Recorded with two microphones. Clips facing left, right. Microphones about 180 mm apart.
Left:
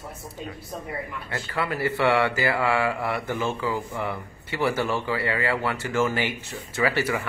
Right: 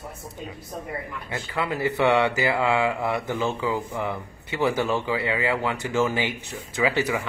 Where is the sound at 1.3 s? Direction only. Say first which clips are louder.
Right 1 dB; 15° right (ahead or behind).